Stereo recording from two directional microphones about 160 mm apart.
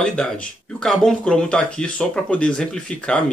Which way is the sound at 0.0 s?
5° left (ahead or behind).